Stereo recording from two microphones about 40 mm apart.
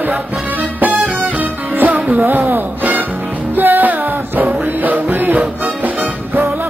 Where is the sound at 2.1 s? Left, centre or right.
Right.